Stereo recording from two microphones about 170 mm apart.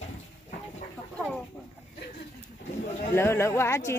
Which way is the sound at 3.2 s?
15° left (ahead or behind).